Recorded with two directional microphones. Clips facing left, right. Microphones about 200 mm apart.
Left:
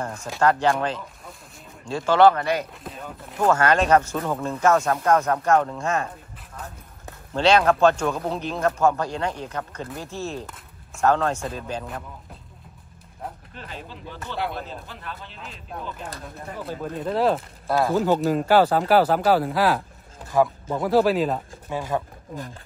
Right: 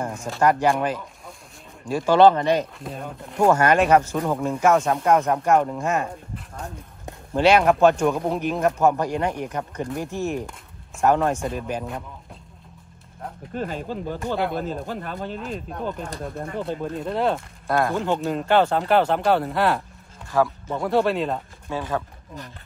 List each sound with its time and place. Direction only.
0.0 s speech: 10° right (ahead or behind)
2.8 s speech: centre (ahead or behind)
3.4 s speech: 15° right (ahead or behind)
13.6 s speech: 45° right (ahead or behind)
16.6 s speech: centre (ahead or behind)
21.6 s speech: 20° left (ahead or behind)